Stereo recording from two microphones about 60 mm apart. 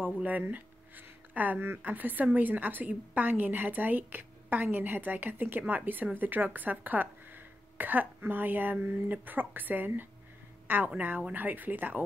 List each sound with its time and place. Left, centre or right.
0.0 s speech: right